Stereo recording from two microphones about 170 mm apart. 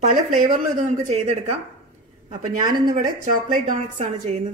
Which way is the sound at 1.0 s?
40° right (ahead or behind).